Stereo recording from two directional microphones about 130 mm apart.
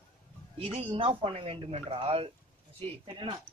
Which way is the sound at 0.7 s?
45° right (ahead or behind).